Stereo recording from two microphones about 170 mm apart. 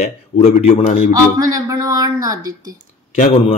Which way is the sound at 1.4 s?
20° right (ahead or behind).